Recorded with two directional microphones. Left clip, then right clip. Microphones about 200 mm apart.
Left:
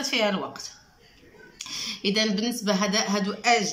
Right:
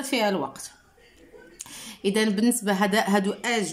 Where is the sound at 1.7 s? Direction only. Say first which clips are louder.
Even; 30° right (ahead or behind).